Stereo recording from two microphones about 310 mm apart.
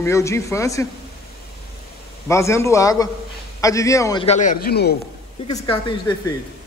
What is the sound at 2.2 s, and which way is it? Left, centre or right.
A man's voice, centre.